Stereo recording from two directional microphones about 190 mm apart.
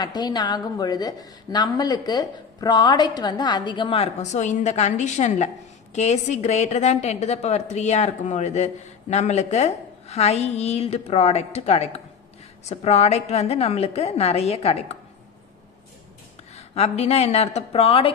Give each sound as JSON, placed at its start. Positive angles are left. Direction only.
{"t": 0.0, "sound": "a woman's voice", "side_deg": 20}
{"t": 16.5, "sound": "a woman's voice", "side_deg": 35}